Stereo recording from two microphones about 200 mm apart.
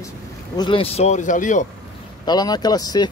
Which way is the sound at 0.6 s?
25° left (ahead or behind).